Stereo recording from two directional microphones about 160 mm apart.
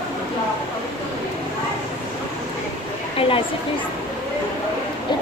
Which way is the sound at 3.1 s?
35° left (ahead or behind).